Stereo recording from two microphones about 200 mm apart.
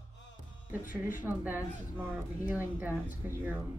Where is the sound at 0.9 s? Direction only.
40° left (ahead or behind).